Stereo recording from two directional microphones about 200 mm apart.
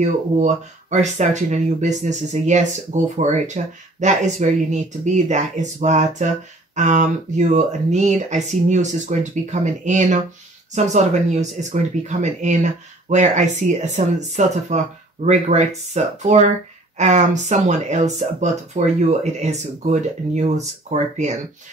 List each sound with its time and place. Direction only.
0.0 s speech: 35° right (ahead or behind)